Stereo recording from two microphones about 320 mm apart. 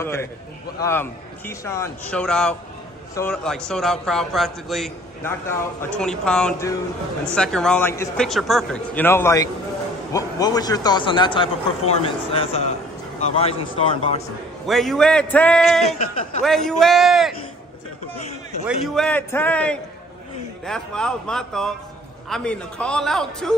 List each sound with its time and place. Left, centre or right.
0.0 s a man's voice: centre
14.7 s a man's voice: centre
18.7 s a man's voice: centre